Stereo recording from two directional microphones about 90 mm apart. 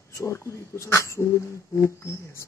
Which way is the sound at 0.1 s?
30° left (ahead or behind).